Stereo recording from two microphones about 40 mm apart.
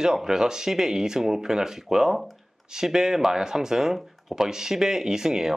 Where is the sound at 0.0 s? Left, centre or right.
Centre.